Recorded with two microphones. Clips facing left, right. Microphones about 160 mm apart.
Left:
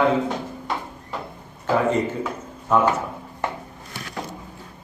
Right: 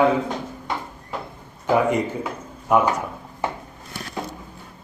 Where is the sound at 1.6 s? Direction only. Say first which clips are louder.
Right 1 dB; 15° right (ahead or behind).